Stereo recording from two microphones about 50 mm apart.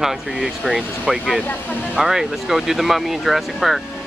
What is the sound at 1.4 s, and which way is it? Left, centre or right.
Speech, left.